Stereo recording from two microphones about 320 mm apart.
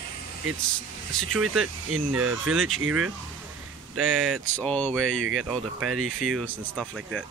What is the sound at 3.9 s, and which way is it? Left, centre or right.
Speech, centre.